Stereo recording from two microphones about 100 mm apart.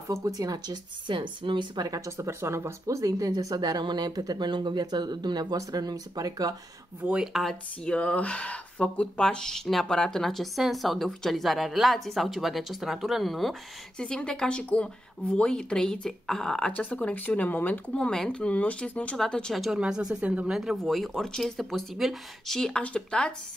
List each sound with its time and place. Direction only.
0.1 s speech: 35° right (ahead or behind)
1.0 s speech: 55° right (ahead or behind)
1.9 s speech: 30° right (ahead or behind)
7.0 s speech: 10° right (ahead or behind)
7.3 s speech: centre (ahead or behind)